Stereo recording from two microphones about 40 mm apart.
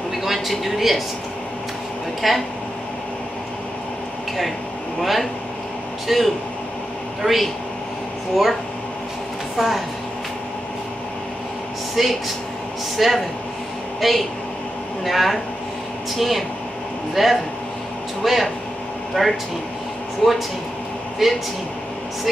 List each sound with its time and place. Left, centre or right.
0.2 s speech: centre
2.2 s speech: centre
5.0 s speech: centre
9.6 s speech: centre
12.0 s speech: centre